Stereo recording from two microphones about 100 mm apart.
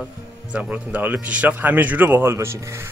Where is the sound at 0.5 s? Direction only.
15° right (ahead or behind).